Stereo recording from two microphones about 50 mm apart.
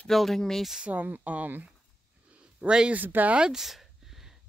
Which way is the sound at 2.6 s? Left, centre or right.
Right.